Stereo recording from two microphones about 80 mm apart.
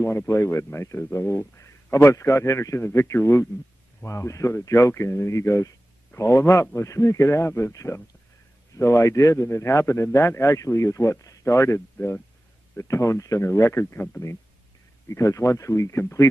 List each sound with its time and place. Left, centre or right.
0.3 s a man's voice: left
15.0 s a man's voice: left